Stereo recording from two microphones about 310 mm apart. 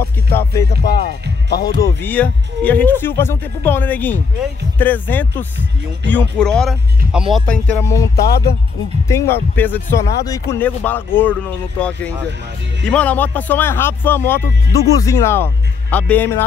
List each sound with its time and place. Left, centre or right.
0.3 s speech: centre
0.8 s speech: left
1.7 s speech: centre
8.2 s speech: left
9.0 s speech: centre
12.8 s speech: centre